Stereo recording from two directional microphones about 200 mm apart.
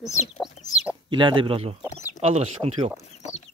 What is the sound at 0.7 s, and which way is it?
Chicken, 5° right (ahead or behind).